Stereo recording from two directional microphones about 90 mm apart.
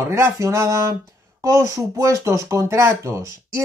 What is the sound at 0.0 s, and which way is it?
Speech, 30° right (ahead or behind).